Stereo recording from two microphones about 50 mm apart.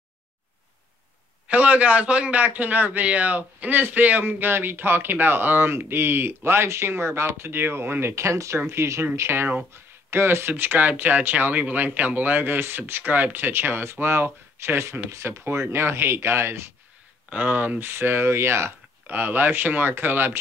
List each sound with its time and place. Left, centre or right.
1.5 s a man's voice: right
8.1 s speech: right
9.1 s a man's voice: right
10.5 s a man's voice: right
17.3 s a man's voice: right
19.0 s speech: right